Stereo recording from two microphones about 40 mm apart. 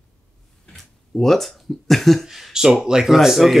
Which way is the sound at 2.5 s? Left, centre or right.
Centre.